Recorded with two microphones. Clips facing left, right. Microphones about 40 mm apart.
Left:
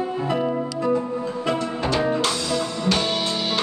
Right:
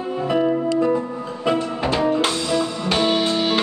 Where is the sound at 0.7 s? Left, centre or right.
Right.